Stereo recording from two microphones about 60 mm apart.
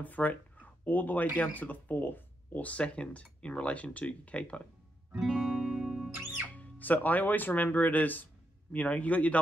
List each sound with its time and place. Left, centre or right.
0.0 s speech: left
5.2 s music: centre
6.2 s music: right
6.5 s speech: left